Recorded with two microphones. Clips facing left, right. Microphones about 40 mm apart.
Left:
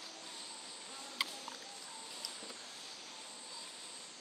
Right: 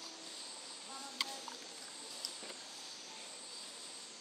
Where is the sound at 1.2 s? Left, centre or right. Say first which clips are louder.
Left 2 dB; centre.